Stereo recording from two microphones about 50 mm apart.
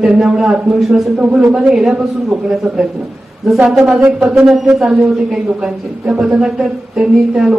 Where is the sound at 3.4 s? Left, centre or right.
Centre.